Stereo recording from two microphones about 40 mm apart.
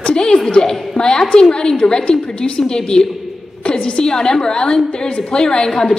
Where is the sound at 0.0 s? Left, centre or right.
Centre.